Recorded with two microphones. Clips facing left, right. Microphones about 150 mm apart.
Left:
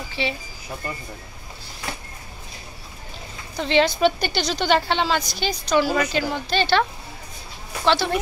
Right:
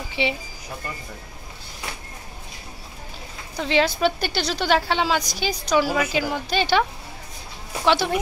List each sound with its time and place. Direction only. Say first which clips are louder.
0.1 s a woman's voice: right 2 dB; 15° right (ahead or behind)
3.5 s a woman's voice: left 2 dB; 5° right (ahead or behind)